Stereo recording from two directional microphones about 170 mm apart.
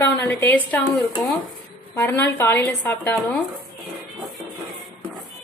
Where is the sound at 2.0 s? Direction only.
10° left (ahead or behind).